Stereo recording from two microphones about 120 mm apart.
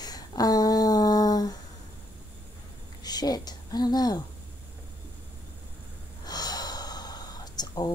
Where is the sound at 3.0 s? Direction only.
35° left (ahead or behind).